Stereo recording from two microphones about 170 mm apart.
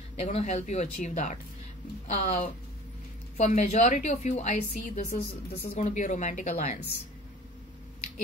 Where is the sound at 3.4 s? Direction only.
45° left (ahead or behind).